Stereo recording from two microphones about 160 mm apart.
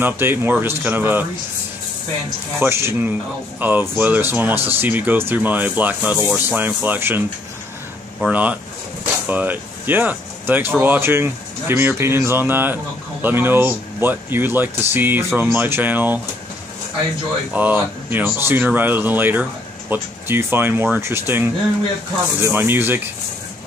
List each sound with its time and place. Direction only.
0.0 s speech: 15° right (ahead or behind)
2.6 s speech: 15° right (ahead or behind)
17.5 s speech: 10° right (ahead or behind)